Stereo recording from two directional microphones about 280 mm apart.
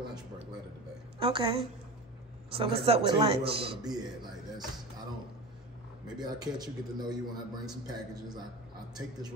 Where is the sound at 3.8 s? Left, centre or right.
Centre.